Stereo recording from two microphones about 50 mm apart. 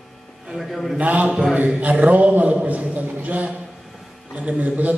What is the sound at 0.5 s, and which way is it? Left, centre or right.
Speech, centre.